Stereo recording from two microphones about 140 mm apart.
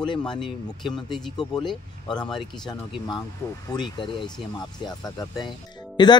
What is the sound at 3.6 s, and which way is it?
Speech, 30° left (ahead or behind).